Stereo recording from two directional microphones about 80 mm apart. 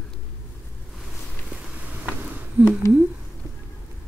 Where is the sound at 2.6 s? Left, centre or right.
Right.